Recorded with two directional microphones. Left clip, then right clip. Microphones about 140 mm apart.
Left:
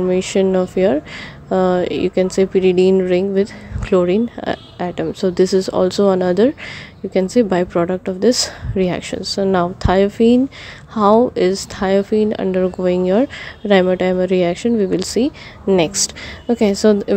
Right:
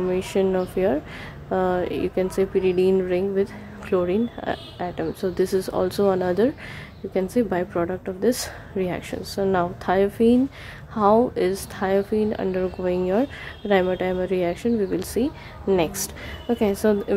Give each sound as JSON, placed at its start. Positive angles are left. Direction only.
{"t": 0.1, "sound": "speech", "side_deg": 30}